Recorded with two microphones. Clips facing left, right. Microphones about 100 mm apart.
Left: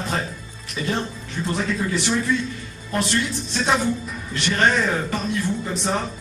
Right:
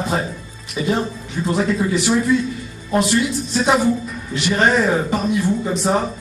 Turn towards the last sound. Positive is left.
turn(degrees=-10)  # may be behind; listen again after turning